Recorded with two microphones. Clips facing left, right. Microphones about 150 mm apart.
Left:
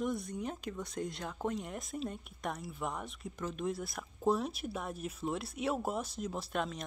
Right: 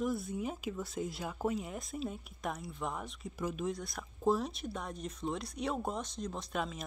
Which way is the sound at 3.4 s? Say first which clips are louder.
Right 2 dB; 10° right (ahead or behind).